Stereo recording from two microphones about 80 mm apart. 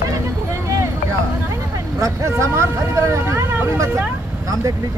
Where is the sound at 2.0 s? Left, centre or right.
Right.